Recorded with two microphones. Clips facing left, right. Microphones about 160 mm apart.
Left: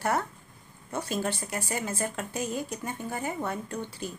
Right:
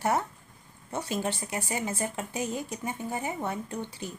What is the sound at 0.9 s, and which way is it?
Speech, 20° right (ahead or behind).